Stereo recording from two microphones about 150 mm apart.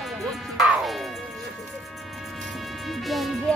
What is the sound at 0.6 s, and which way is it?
Music, centre (ahead or behind).